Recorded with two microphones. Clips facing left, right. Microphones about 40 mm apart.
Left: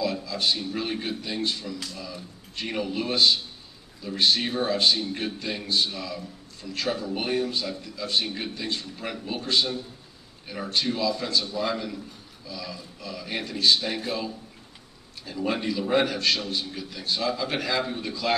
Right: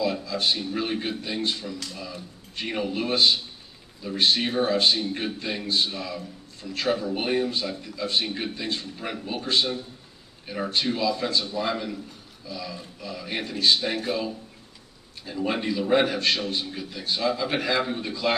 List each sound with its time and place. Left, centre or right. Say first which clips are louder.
0.0 s a sound: right 1 dB; centre
0.7 s a man's voice: right 2 dB; centre
1.4 s a man's voice: even; right
1.9 s a man's voice: right 1 dB; centre
11.5 s a man's voice: right 1 dB; centre
15.2 s a man's voice: right 1 dB; centre